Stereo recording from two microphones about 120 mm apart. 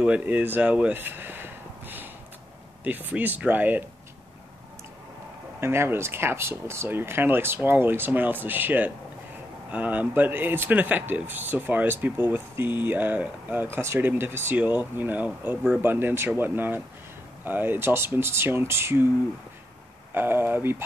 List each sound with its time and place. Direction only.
0.0 s speech: 10° right (ahead or behind)
5.6 s speech: 20° right (ahead or behind)
20.2 s speech: 20° right (ahead or behind)